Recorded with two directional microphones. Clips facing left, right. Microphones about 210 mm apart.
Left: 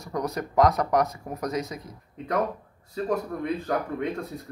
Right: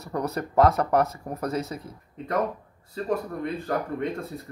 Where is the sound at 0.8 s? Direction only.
30° right (ahead or behind).